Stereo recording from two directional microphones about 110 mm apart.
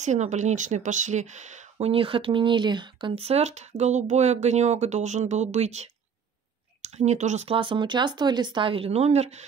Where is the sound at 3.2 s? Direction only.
75° right (ahead or behind); by 7.5 s 90° right.